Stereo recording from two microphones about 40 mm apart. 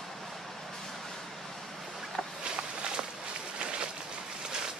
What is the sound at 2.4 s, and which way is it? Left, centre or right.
Walk, right.